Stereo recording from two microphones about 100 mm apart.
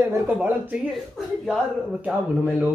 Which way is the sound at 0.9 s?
Centre (ahead or behind).